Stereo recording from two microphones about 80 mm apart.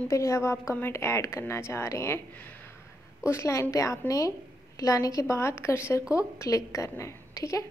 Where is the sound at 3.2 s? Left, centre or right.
Left.